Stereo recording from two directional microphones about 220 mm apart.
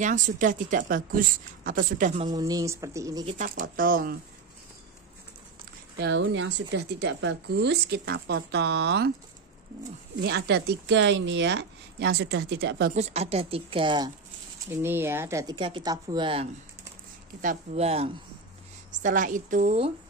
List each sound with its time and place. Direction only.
0.0 s speech: 35° right (ahead or behind)
2.2 s speech: 15° right (ahead or behind)
3.3 s speech: 35° right (ahead or behind)
5.9 s speech: 55° right (ahead or behind)
10.2 s speech: 50° right (ahead or behind)
12.9 s speech: 30° right (ahead or behind); by 15.5 s 15° right (ahead or behind)
15.5 s speech: 25° right (ahead or behind)
17.4 s speech: 30° right (ahead or behind)